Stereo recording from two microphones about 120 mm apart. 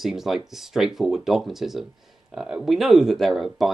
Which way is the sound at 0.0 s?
5° right (ahead or behind).